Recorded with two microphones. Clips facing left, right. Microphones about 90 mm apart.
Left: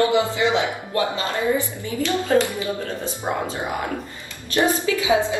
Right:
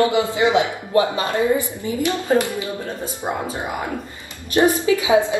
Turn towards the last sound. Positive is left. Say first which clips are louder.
# right 3 dB
turn(degrees=-20)  # may be behind; listen again after turning